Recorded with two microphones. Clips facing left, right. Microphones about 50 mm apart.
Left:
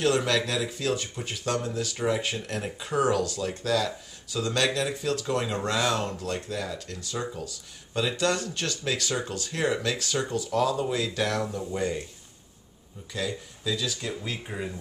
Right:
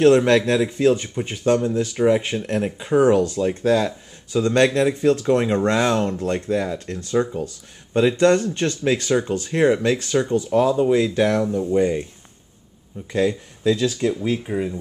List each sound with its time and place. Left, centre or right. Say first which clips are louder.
0.0 s speech: right 10 dB; right
13.1 s speech: right 11 dB; right
14.4 s speech: right 9 dB; centre